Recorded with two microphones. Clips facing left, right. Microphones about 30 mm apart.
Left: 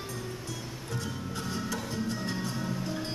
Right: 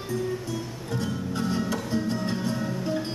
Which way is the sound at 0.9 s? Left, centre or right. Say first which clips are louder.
Right 8 dB; centre.